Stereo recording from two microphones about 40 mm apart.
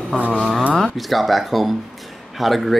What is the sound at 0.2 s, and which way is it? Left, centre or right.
Speech, right.